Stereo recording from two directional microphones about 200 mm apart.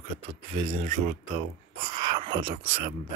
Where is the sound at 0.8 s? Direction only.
40° right (ahead or behind).